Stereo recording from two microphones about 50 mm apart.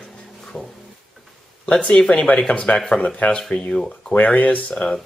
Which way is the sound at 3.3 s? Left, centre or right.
Centre.